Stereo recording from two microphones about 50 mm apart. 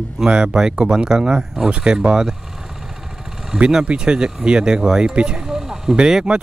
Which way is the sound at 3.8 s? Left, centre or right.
Centre.